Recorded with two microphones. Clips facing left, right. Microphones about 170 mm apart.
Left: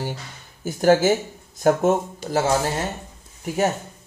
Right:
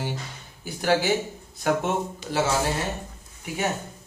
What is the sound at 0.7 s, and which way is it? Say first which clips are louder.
A man's voice: left 6 dB; 45° left (ahead or behind).